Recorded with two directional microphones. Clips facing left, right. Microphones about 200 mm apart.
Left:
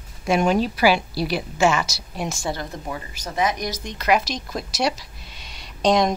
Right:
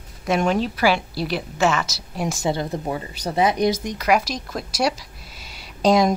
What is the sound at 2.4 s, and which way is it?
Speech, 25° right (ahead or behind).